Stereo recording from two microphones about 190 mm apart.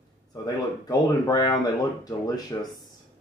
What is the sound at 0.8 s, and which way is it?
Speech, 20° left (ahead or behind).